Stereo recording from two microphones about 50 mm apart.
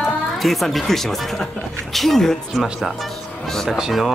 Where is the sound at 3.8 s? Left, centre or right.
Centre.